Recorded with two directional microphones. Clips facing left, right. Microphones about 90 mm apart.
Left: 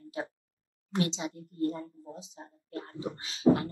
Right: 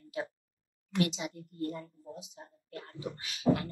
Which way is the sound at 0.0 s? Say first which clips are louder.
Left 1 dB; 35° left (ahead or behind).